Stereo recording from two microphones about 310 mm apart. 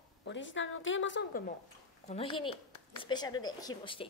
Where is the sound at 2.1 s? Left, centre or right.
Centre.